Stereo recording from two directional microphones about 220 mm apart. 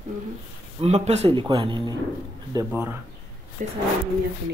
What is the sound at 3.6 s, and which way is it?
Speech, 35° right (ahead or behind).